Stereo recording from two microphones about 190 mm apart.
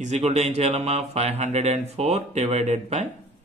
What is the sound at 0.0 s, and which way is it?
Speech, 35° right (ahead or behind).